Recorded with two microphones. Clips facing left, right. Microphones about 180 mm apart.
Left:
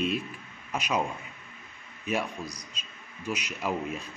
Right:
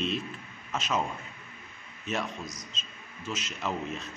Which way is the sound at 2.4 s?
35° left (ahead or behind).